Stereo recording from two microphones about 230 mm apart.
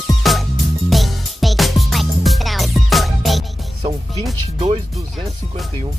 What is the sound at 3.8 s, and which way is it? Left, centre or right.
Music, right.